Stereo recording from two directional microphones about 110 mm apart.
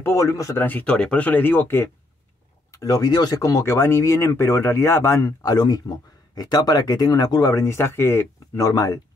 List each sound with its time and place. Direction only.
0.0 s speech: 30° left (ahead or behind)
0.6 s speech: 15° left (ahead or behind)
2.7 s speech: 30° left (ahead or behind)